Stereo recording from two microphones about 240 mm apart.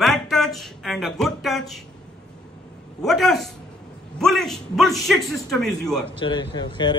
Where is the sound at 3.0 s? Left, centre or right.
Centre.